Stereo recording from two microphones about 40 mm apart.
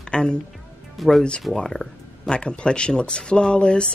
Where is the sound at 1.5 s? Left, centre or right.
Centre.